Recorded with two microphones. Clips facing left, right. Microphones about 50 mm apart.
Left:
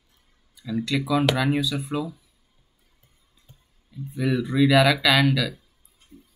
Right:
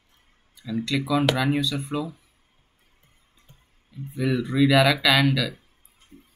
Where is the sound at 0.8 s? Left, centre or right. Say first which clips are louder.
Even; centre.